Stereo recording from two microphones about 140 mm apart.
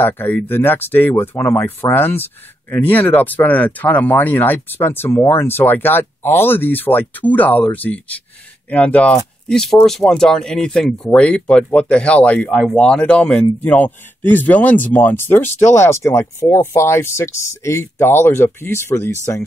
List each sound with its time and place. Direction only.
0.0 s speech: 15° left (ahead or behind)